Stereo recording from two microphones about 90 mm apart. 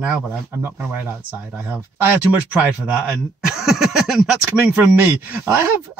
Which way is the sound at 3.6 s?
5° right (ahead or behind).